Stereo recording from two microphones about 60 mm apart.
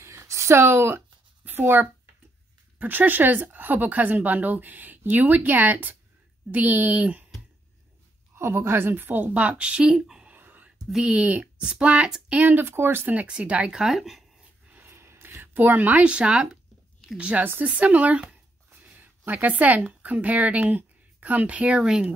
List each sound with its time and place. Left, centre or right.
0.0 s a sound: right
1.4 s a child's voice: right
8.4 s a woman's voice: right; by 10.2 s centre
10.3 s whispering: right
10.9 s a woman's voice: centre
11.1 s a woman's voice: right
12.4 s a woman's voice: right
13.3 s a woman's voice: centre
14.7 s a sound: right; by 16.4 s centre
17.2 s speech: centre
18.8 s a sound: right
19.9 s speech: right